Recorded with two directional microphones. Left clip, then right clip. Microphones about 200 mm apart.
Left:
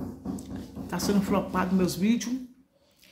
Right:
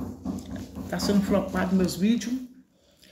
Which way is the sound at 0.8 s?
15° left (ahead or behind).